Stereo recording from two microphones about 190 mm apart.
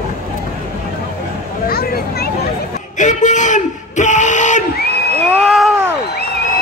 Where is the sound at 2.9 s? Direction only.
40° left (ahead or behind).